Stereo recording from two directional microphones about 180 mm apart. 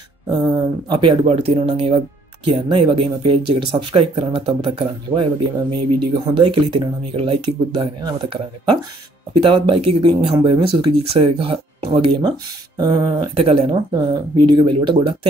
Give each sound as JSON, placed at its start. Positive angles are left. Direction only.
{"t": 0.8, "sound": "speech", "side_deg": -25}
{"t": 9.4, "sound": "speech", "side_deg": -30}